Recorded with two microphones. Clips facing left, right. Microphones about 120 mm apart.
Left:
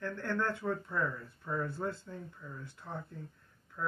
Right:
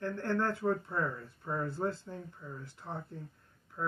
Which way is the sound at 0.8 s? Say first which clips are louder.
Even; 25° right (ahead or behind).